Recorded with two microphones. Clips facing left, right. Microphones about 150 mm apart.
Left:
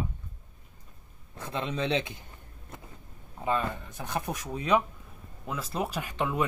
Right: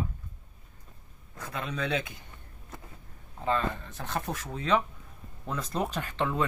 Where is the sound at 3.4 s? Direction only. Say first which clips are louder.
Even; 15° left (ahead or behind).